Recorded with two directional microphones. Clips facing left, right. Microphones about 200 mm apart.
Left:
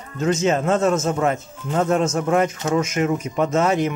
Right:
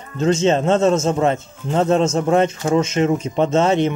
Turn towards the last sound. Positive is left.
turn(degrees=-25)  # may be behind; listen again after turning